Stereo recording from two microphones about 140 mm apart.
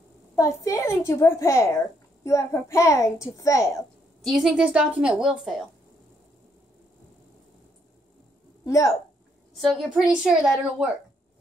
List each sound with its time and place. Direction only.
0.4 s a child's voice: 25° left (ahead or behind)
4.2 s a woman's voice: centre (ahead or behind)
8.6 s speech: 20° left (ahead or behind)
9.5 s a woman's voice: centre (ahead or behind)